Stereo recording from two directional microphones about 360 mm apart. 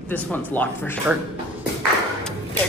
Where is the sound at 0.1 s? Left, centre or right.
Centre.